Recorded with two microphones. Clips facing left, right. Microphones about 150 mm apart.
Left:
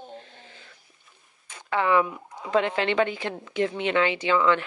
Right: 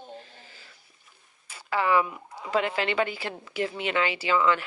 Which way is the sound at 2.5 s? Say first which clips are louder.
Left 3 dB; 5° right (ahead or behind).